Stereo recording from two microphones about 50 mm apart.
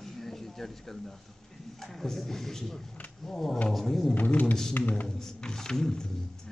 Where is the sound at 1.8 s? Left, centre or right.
Centre.